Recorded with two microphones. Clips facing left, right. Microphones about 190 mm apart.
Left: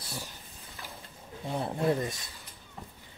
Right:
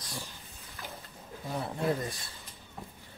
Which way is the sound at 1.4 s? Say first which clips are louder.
Left 3 dB; 25° left (ahead or behind).